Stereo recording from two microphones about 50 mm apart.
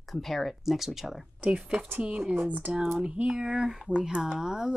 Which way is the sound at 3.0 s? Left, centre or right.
Right.